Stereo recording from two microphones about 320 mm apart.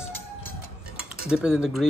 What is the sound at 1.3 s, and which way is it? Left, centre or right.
Speech, centre.